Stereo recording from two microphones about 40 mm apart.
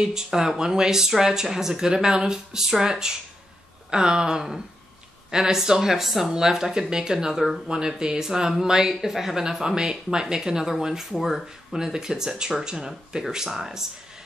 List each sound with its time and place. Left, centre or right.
0.0 s speech: centre
13.5 s speech: centre